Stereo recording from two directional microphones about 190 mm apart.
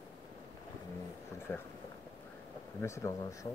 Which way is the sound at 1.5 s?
10° left (ahead or behind).